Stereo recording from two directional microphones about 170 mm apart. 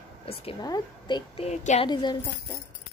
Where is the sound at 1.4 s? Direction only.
40° left (ahead or behind).